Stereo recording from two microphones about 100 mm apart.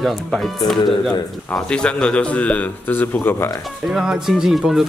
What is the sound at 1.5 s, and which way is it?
A man's voice, 10° left (ahead or behind).